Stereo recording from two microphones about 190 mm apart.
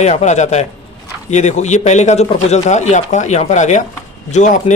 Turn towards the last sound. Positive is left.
turn(degrees=40)  # may be behind; listen again after turning